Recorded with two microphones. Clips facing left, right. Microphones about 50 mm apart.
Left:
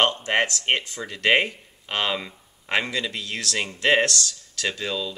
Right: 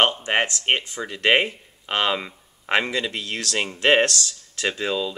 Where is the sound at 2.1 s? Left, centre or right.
Centre.